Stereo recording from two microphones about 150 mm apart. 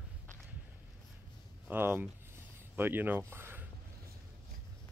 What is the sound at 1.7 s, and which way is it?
Speech, 15° right (ahead or behind).